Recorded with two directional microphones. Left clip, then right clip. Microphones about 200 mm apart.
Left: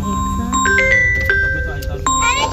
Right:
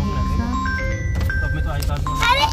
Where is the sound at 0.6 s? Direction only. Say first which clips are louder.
Left 13 dB; 55° left (ahead or behind).